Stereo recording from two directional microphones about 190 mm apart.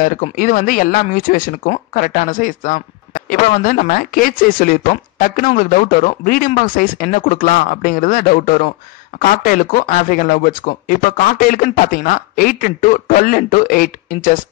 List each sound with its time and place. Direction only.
0.0 s speech: 45° left (ahead or behind)